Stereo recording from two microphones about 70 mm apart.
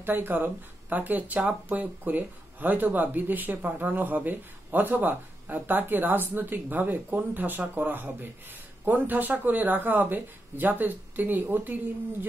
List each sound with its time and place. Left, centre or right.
0.0 s speech: right